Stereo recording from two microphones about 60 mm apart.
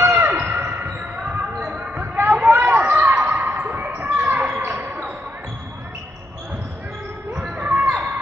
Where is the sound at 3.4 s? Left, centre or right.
Right.